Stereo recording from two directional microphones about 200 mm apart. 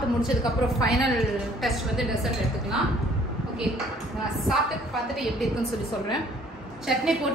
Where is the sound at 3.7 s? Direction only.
Centre (ahead or behind).